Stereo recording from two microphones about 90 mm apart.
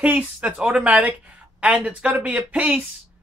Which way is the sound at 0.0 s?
15° right (ahead or behind).